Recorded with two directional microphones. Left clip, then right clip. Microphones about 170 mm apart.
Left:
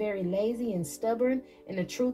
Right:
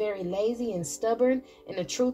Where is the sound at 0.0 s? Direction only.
50° right (ahead or behind).